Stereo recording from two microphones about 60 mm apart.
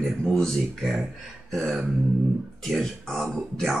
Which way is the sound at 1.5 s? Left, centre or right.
Centre.